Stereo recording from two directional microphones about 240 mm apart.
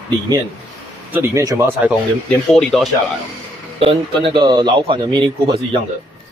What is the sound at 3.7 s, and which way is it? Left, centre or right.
A man's voice, right.